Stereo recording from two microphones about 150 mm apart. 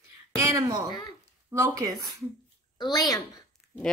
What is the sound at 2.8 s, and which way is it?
Speech, 25° left (ahead or behind).